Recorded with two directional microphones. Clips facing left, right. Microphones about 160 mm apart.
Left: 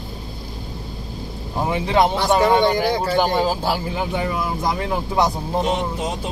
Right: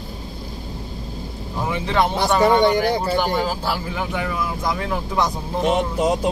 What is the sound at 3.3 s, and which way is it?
Speech, 20° left (ahead or behind).